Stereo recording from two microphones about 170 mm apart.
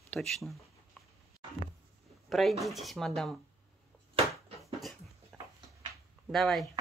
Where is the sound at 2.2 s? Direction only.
Centre (ahead or behind).